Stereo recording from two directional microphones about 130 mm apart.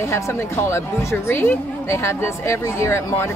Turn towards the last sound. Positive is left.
turn(degrees=20)  # may be behind; listen again after turning